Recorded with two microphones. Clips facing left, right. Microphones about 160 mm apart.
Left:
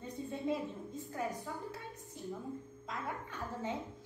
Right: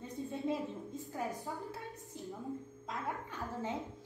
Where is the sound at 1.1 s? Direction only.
Centre (ahead or behind).